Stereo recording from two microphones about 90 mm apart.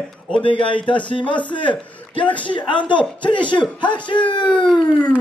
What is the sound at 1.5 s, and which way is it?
Speech, 65° left (ahead or behind).